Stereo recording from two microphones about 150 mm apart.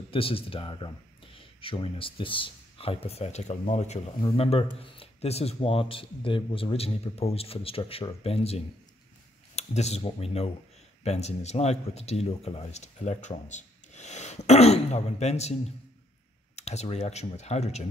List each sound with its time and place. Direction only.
0.1 s speech: 40° left (ahead or behind)
16.5 s speech: 45° left (ahead or behind)